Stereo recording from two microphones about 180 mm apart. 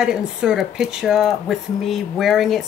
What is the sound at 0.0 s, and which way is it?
Speech, 5° right (ahead or behind).